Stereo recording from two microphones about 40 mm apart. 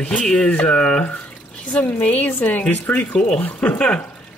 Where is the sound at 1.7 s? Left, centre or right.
Left.